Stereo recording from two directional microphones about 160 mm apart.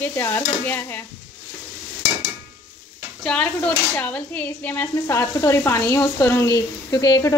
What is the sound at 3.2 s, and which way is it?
Speech, 10° left (ahead or behind).